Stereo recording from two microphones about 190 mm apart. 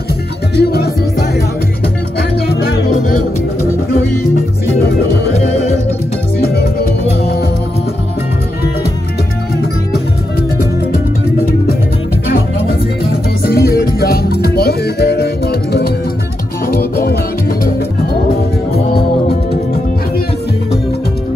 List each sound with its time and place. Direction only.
0.6 s music: 55° left (ahead or behind)
2.6 s music: 45° left (ahead or behind)
5.3 s music: 35° left (ahead or behind)
6.4 s music: 55° left (ahead or behind)
13.5 s music: 55° left (ahead or behind)